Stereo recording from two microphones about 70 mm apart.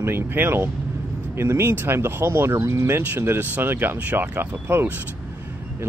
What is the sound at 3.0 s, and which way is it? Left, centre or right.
Speech, right.